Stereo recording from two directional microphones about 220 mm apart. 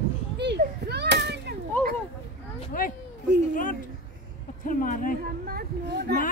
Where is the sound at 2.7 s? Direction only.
40° left (ahead or behind).